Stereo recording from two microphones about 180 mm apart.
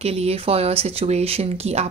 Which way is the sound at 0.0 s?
35° right (ahead or behind).